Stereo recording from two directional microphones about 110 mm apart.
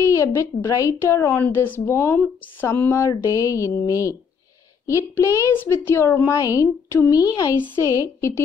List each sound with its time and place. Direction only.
0.0 s a woman's voice: 25° left (ahead or behind)